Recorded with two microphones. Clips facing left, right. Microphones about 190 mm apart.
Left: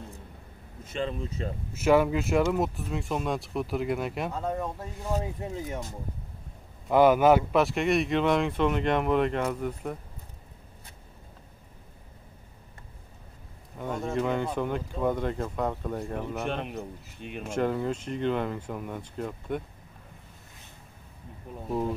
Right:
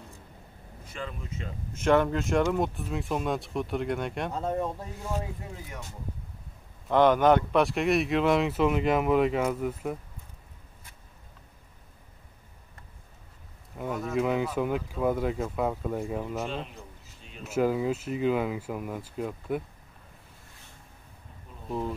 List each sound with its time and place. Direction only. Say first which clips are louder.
0.8 s speech: left 7 dB; 25° left (ahead or behind)
1.7 s speech: left 1 dB; 5° left (ahead or behind)
4.3 s speech: right 1 dB; 30° right (ahead or behind)
5.7 s speech: left 7 dB; 35° left (ahead or behind)
6.9 s speech: left 1 dB; 5° left (ahead or behind)
13.7 s speech: right 1 dB; 5° right (ahead or behind)
16.4 s a man's voice: left 4 dB; 65° left (ahead or behind)
17.5 s speech: right 2 dB; 5° right (ahead or behind)